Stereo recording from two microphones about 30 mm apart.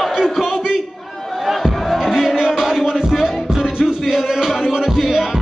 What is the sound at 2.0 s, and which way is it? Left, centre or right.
Music, centre.